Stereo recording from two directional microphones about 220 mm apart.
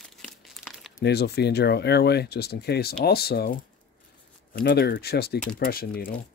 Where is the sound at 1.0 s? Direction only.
50° left (ahead or behind).